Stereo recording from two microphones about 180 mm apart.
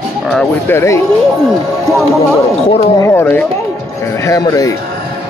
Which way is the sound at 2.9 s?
15° left (ahead or behind).